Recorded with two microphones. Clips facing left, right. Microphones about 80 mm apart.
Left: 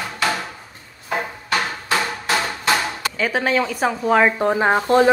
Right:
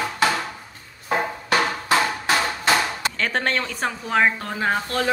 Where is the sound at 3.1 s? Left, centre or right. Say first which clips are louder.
Left 5 dB; centre.